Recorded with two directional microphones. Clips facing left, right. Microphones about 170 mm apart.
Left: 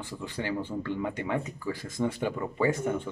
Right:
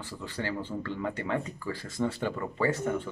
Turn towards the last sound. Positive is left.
turn(degrees=15)  # may be behind; listen again after turning